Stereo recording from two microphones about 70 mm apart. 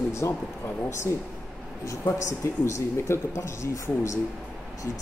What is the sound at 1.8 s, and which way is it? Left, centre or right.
Speech, left.